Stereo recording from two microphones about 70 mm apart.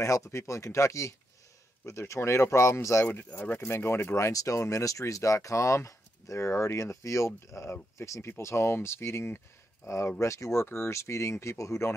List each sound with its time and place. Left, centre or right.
0.0 s speech: left
3.1 s speech: left
4.3 s speech: left